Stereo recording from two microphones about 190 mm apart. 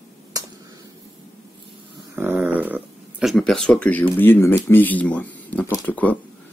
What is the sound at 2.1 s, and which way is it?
Speech, 10° right (ahead or behind).